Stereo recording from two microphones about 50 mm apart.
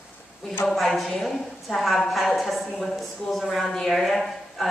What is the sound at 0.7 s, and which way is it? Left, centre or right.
Speech, centre.